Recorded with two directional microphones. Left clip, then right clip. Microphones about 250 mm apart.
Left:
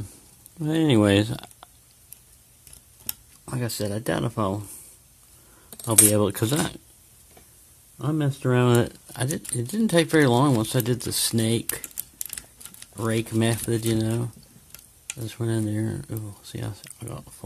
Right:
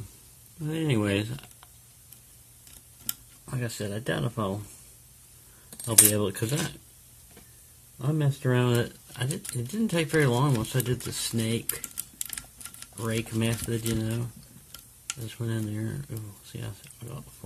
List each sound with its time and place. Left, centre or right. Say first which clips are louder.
0.7 s speech: left 8 dB; left
3.4 s speech: left 5 dB; left
5.9 s speech: left 4 dB; left
8.0 s speech: left 4 dB; left
13.0 s speech: left 5 dB; left